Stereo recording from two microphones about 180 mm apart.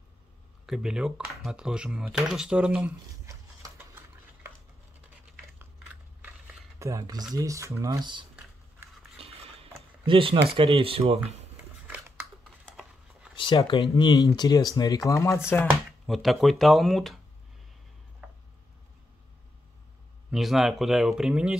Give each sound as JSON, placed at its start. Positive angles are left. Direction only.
{"t": 0.7, "sound": "speech", "side_deg": -5}
{"t": 3.3, "sound": "a sound", "side_deg": -15}
{"t": 6.2, "sound": "speech", "side_deg": -15}
{"t": 9.2, "sound": "cutlery", "side_deg": -30}
{"t": 10.0, "sound": "speech", "side_deg": -30}
{"t": 13.4, "sound": "speech", "side_deg": 25}
{"t": 16.1, "sound": "speech", "side_deg": 0}
{"t": 18.2, "sound": "a sound", "side_deg": -10}
{"t": 20.2, "sound": "speech", "side_deg": 0}